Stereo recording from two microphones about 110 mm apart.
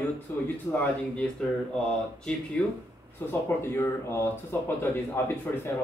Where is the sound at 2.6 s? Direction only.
10° left (ahead or behind).